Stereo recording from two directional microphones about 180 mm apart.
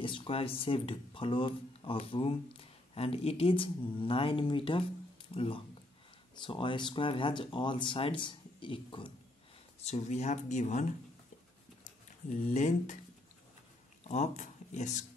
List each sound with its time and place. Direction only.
0.0 s speech: 30° left (ahead or behind)
9.8 s speech: 40° left (ahead or behind)
11.8 s a sound: 45° left (ahead or behind)
14.0 s speech: 40° left (ahead or behind)